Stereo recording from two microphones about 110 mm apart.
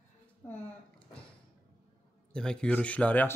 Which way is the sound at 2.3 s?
5° left (ahead or behind).